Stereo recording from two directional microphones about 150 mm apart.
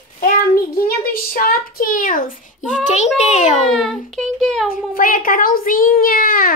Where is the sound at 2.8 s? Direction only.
50° left (ahead or behind).